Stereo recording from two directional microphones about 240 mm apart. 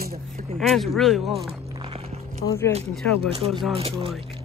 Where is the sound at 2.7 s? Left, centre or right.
Right.